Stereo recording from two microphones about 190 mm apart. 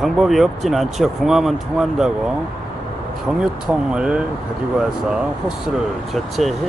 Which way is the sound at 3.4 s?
5° right (ahead or behind).